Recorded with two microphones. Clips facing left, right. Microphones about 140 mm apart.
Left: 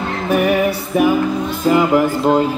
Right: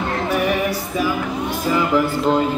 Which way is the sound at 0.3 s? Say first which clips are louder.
Left 7 dB; 60° left (ahead or behind).